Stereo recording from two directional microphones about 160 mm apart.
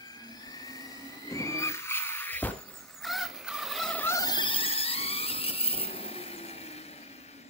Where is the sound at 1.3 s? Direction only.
20° left (ahead or behind).